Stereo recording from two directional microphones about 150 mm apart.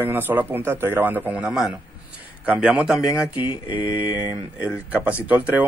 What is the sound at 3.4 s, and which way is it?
Mantra, 35° left (ahead or behind).